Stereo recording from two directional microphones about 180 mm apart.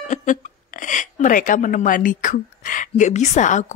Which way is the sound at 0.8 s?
45° left (ahead or behind).